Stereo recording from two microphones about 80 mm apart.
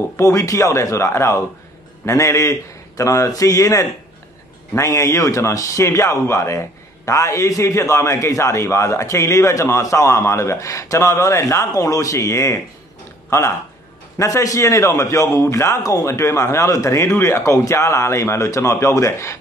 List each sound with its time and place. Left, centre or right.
0.2 s a man's voice: left